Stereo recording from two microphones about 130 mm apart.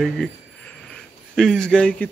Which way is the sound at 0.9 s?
5° left (ahead or behind).